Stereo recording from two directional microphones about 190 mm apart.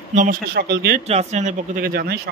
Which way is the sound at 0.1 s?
45° right (ahead or behind).